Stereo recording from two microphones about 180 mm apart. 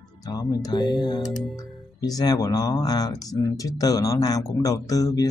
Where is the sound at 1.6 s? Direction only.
20° left (ahead or behind).